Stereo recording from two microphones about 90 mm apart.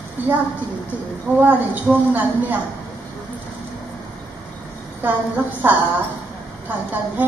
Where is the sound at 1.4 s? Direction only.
20° right (ahead or behind).